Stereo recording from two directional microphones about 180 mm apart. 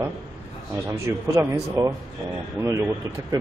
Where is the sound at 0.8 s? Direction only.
15° right (ahead or behind).